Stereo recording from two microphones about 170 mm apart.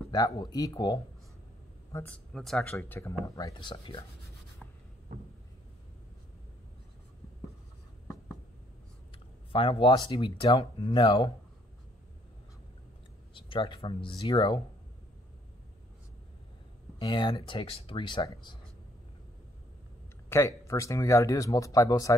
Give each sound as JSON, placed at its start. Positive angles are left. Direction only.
{"t": 0.1, "sound": "speech", "side_deg": 20}
{"t": 1.9, "sound": "speech", "side_deg": 10}
{"t": 9.5, "sound": "speech", "side_deg": 30}
{"t": 13.3, "sound": "speech", "side_deg": 30}
{"t": 17.0, "sound": "speech", "side_deg": 30}
{"t": 20.2, "sound": "speech", "side_deg": 15}